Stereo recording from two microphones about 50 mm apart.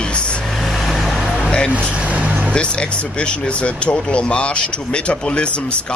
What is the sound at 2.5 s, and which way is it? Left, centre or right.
Speech, left.